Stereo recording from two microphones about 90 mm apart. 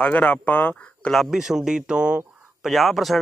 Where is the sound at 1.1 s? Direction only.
Centre (ahead or behind).